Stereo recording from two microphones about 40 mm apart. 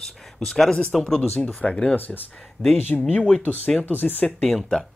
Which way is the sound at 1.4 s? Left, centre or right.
Left.